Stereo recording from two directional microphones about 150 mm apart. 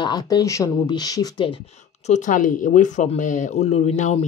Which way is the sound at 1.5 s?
45° left (ahead or behind).